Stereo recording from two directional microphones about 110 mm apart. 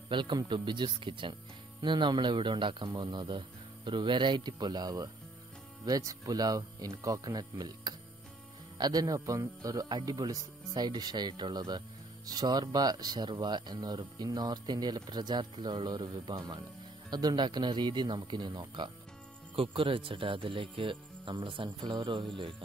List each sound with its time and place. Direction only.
0.1 s a man's voice: 45° right (ahead or behind)
19.5 s a man's voice: 55° right (ahead or behind)